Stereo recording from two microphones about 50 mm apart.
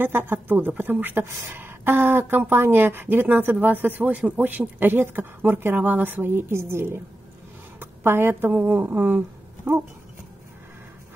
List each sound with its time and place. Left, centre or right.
0.0 s speech: right
1.2 s speech: right
1.6 s speech: right
5.8 s speech: right
7.8 s a sound: right
8.5 s speech: right